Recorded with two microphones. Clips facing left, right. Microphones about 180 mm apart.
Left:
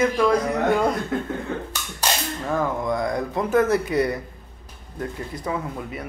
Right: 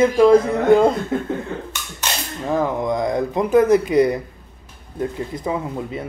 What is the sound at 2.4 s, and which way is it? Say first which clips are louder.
Speech: right 5 dB; 20° right (ahead or behind).